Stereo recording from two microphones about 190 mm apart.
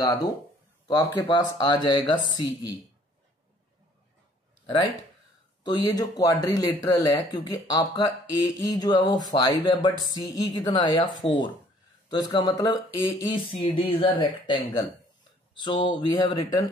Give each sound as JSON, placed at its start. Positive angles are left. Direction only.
{"t": 0.0, "sound": "speech", "side_deg": 20}
{"t": 5.6, "sound": "speech", "side_deg": 25}